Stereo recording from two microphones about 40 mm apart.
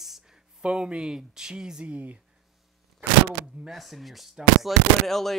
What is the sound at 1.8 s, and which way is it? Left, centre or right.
Speech, right.